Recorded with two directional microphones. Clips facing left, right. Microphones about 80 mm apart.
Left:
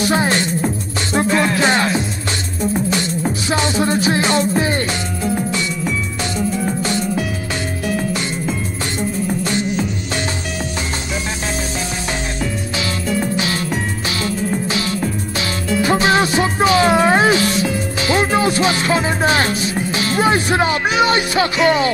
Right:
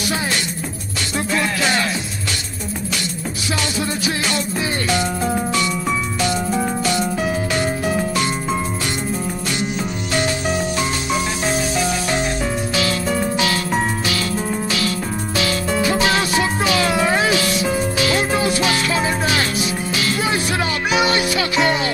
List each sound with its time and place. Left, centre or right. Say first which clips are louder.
0.0 s music: left 6 dB; left
14.0 s music: left 1 dB; left